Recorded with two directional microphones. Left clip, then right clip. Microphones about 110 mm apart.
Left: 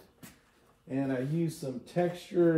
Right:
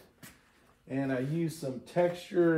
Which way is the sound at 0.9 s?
25° right (ahead or behind).